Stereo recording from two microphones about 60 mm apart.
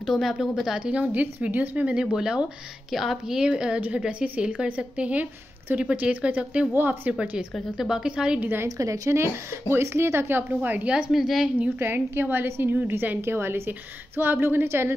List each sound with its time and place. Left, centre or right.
0.0 s speech: centre
1.0 s a woman's voice: right
2.1 s a woman's voice: centre
3.4 s a woman's voice: centre
6.7 s a woman's voice: right
7.1 s a woman's voice: centre
8.4 s a woman's voice: right
8.6 s speech: right
9.2 s a woman's voice: right
11.1 s speech: centre
11.8 s a woman's voice: right